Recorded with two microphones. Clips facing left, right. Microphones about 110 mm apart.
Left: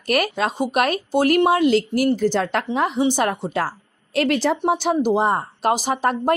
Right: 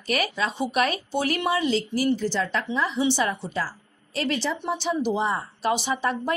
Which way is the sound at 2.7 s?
50° left (ahead or behind).